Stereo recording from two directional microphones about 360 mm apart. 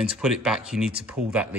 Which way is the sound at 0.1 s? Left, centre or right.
Centre.